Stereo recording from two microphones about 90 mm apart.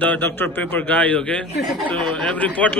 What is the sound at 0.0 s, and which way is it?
A man's voice, 20° left (ahead or behind).